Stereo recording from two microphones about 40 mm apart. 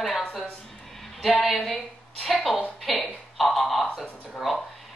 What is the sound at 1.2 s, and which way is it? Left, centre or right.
A woman's voice, centre.